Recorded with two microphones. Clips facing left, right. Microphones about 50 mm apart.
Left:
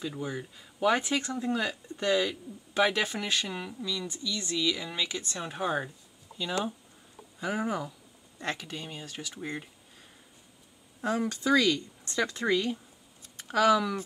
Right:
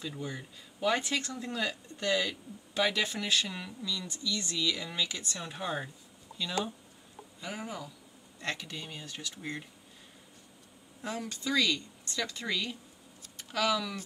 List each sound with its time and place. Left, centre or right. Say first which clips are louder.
0.0 s speech: left 4 dB; centre
7.3 s speech: left 9 dB; left
8.4 s speech: left 2 dB; left
11.0 s speech: left 8 dB; left